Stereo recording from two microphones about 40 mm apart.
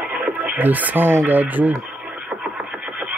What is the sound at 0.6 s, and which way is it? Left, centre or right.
Speech, right.